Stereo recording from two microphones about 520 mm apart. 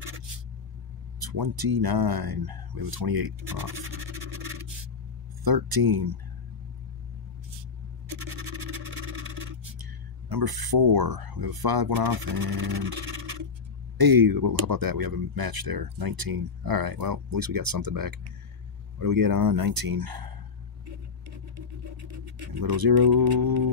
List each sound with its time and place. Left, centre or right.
1.2 s speech: right
5.4 s speech: right
10.3 s speech: right
13.9 s speech: right
22.6 s speech: right